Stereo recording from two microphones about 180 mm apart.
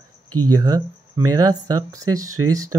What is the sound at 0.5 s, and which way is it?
Speech, 20° right (ahead or behind).